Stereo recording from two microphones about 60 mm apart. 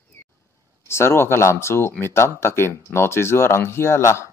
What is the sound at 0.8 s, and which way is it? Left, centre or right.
Speech, left.